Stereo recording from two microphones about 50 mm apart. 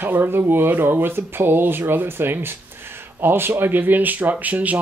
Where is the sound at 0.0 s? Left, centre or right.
Right.